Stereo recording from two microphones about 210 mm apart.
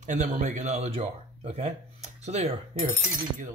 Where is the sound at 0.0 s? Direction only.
35° right (ahead or behind).